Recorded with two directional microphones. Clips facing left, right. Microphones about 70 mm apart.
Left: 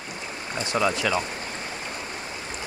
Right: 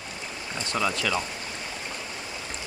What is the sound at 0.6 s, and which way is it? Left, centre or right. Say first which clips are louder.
Speech: left 3 dB; centre.